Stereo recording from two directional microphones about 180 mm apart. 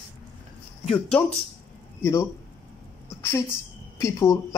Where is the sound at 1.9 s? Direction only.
15° left (ahead or behind).